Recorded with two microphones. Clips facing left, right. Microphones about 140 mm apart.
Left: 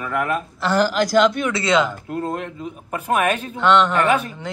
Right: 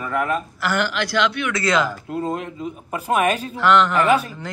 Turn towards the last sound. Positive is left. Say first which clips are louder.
# right 1 dB
turn(degrees=0)  # may be behind; listen again after turning